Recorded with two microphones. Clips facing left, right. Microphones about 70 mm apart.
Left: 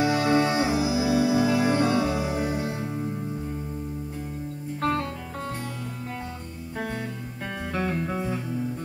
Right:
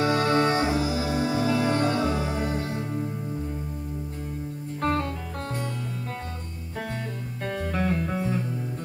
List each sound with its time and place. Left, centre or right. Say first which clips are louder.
0.0 s music: even; centre
4.8 s music: even; centre
7.7 s music: left 1 dB; centre